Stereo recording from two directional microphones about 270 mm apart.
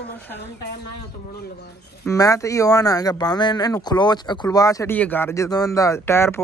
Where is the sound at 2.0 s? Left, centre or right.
Centre.